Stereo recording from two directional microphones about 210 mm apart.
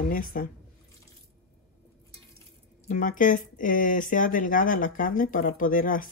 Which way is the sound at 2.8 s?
35° left (ahead or behind).